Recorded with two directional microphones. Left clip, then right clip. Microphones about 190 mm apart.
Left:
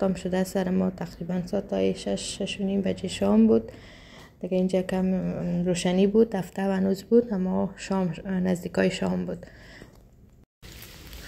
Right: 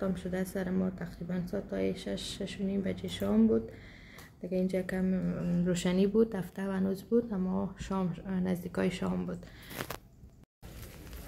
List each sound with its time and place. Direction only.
0.0 s speech: 25° left (ahead or behind)